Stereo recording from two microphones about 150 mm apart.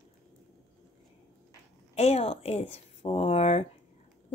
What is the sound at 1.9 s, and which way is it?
A woman's voice, 45° left (ahead or behind).